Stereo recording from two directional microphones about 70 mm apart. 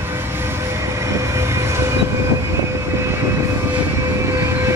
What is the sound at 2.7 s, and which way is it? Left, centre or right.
Vehicle, right.